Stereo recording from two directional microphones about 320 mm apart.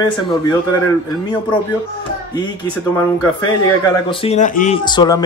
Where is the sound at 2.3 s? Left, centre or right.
Centre.